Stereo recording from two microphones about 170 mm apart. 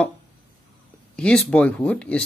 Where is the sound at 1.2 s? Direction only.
5° left (ahead or behind).